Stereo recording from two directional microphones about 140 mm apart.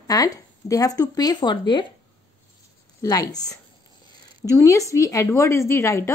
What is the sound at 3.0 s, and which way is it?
Speech, 25° left (ahead or behind).